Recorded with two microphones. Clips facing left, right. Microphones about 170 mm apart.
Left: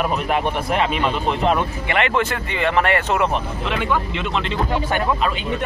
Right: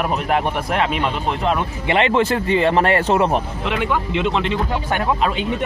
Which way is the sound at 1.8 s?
25° right (ahead or behind).